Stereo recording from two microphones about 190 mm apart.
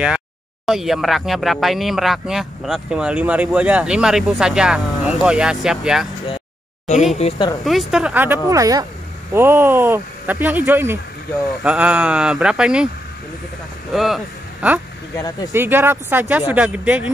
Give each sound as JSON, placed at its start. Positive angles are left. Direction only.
{"t": 0.7, "sound": "speech", "side_deg": 0}
{"t": 7.2, "sound": "speech", "side_deg": 30}
{"t": 7.6, "sound": "speech", "side_deg": 0}
{"t": 13.9, "sound": "speech", "side_deg": 0}
{"t": 15.1, "sound": "speech", "side_deg": 20}
{"t": 15.5, "sound": "speech", "side_deg": -10}